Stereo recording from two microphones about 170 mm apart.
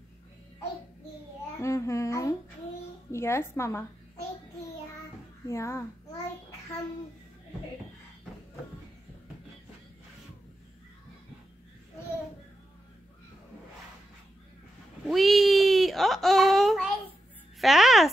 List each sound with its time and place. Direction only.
1.6 s babbling: 15° left (ahead or behind)
3.1 s a woman's voice: 15° left (ahead or behind)
5.5 s a child's voice: 15° left (ahead or behind)
15.0 s a sound: centre (ahead or behind)
17.6 s a child's voice: centre (ahead or behind)